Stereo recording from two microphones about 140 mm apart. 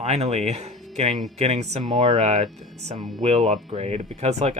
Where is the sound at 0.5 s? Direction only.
55° right (ahead or behind).